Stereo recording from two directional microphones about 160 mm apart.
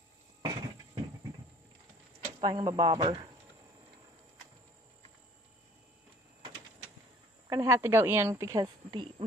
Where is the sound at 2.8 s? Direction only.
40° right (ahead or behind).